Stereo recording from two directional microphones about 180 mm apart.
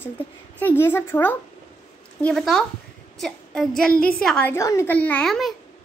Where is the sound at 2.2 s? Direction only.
Centre (ahead or behind).